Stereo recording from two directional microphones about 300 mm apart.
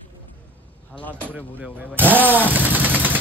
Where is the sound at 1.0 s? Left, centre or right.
Centre.